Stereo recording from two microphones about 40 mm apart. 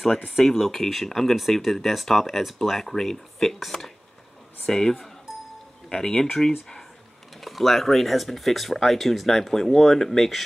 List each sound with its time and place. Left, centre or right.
0.4 s speech: centre
4.6 s a sound: centre
5.9 s speech: centre
7.3 s speech: centre